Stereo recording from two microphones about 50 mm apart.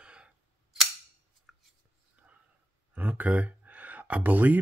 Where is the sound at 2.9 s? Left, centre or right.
Right.